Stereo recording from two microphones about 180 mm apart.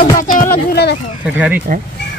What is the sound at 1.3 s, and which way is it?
Speech, 5° right (ahead or behind).